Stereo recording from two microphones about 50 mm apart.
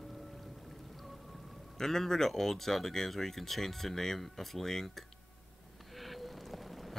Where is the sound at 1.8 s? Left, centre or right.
Centre.